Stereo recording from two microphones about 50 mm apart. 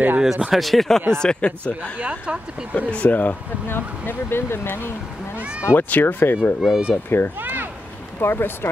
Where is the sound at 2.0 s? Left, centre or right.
Right.